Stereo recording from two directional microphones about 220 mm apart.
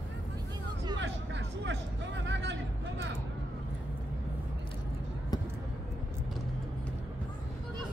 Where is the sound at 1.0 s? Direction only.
55° right (ahead or behind).